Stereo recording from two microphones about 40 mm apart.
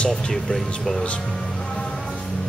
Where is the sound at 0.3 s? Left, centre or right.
Centre.